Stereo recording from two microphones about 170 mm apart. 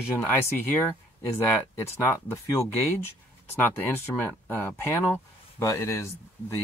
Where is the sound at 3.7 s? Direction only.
10° left (ahead or behind).